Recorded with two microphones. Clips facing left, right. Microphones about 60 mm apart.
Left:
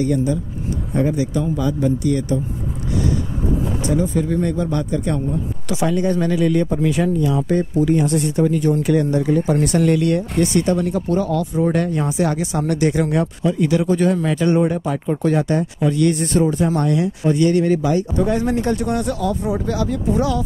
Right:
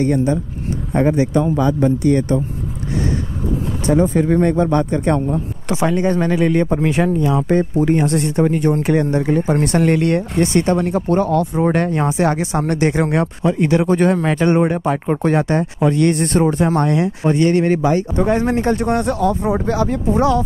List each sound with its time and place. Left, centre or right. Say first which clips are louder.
0.0 s a man's voice: right 2 dB; right
3.8 s speech: right 7 dB; right